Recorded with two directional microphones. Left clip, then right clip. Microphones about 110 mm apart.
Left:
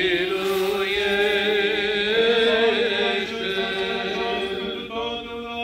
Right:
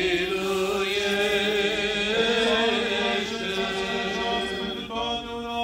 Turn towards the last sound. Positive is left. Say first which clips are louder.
# left 2 dB
turn(degrees=-35)  # may be behind; listen again after turning